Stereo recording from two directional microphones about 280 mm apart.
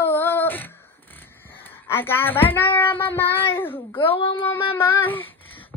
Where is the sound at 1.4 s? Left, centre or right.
Centre.